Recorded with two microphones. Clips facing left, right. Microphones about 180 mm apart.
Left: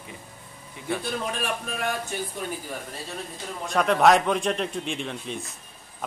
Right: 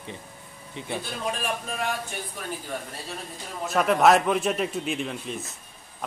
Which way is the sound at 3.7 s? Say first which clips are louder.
Even; 5° right (ahead or behind).